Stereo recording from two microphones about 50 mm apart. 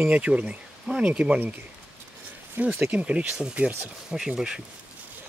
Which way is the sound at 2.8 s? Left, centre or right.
Right.